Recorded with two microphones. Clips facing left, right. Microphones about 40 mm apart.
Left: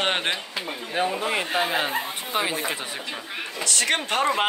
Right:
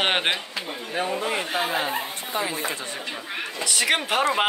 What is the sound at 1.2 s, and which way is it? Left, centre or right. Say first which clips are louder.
Speech: left 1 dB; centre.